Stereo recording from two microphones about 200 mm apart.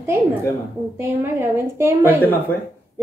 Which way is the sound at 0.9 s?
10° right (ahead or behind).